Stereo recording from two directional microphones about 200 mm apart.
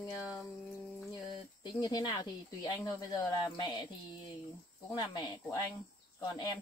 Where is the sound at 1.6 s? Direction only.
20° left (ahead or behind).